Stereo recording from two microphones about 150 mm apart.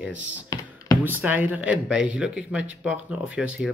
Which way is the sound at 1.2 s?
10° right (ahead or behind).